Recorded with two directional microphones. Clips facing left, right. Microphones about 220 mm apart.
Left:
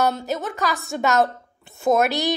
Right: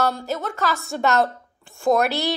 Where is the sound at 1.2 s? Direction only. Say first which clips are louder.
Left 2 dB; 20° left (ahead or behind).